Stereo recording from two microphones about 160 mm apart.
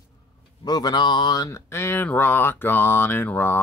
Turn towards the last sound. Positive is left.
turn(degrees=15)  # may be behind; listen again after turning